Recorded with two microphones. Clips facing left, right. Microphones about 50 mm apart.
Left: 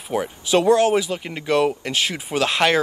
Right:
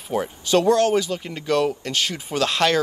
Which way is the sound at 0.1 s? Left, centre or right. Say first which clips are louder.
Left 1 dB; centre.